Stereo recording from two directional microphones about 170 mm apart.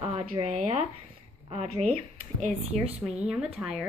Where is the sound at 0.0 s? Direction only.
35° right (ahead or behind).